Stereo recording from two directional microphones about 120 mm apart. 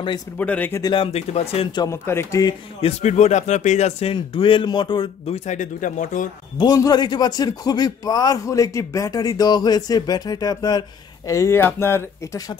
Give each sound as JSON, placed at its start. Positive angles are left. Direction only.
{"t": 0.4, "sound": "speech", "side_deg": 15}
{"t": 0.9, "sound": "speech", "side_deg": 55}
{"t": 1.9, "sound": "speech", "side_deg": 20}
{"t": 2.8, "sound": "speech", "side_deg": 75}
{"t": 5.2, "sound": "speech", "side_deg": 70}
{"t": 6.6, "sound": "a man's voice", "side_deg": 35}